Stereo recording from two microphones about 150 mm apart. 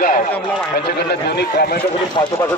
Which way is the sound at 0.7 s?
90° left.